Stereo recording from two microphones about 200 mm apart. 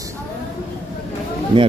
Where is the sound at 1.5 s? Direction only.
25° right (ahead or behind).